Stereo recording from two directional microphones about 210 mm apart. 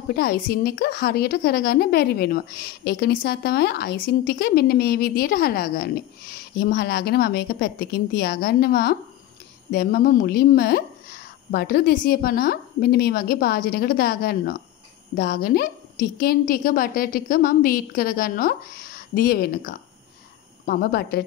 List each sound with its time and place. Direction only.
0.1 s a woman's voice: 45° left (ahead or behind)